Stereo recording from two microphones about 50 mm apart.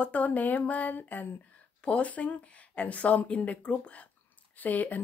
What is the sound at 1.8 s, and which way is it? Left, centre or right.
Speech, left.